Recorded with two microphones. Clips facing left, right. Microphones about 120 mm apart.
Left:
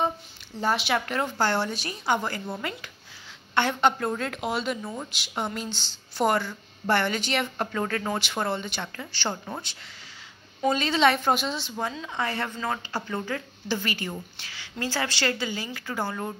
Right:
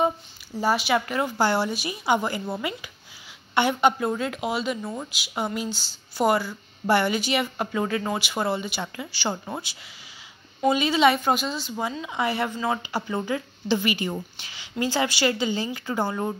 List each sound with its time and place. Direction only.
0.6 s a woman's voice: 5° right (ahead or behind)